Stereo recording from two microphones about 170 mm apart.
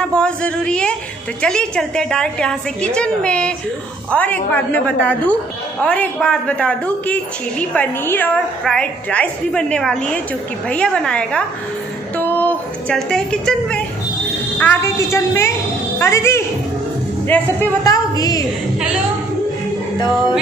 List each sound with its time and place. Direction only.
0.0 s a woman's voice: 5° left (ahead or behind)
12.2 s a sound: 10° left (ahead or behind)
14.6 s a woman's voice: 10° left (ahead or behind)